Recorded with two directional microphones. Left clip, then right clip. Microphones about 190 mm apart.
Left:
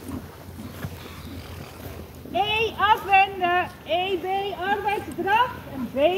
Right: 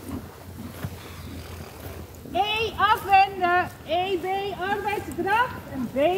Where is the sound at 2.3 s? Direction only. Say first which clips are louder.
Left 1 dB; 60° right (ahead or behind).